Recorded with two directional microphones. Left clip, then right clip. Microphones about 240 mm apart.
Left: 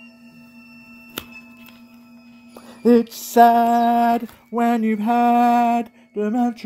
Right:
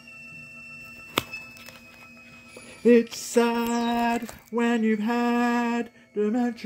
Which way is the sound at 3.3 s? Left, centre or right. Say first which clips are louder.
Left 11 dB; left.